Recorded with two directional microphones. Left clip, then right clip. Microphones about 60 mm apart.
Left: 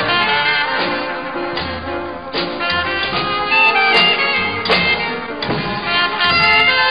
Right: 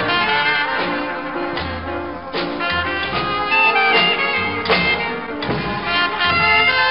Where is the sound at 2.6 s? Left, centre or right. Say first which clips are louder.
Left 3 dB; left.